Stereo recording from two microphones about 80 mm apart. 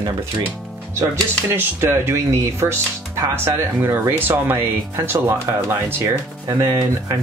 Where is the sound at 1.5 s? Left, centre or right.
Right.